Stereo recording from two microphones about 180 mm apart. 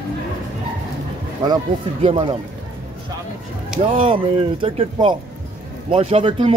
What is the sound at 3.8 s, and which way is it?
Speech, 30° right (ahead or behind).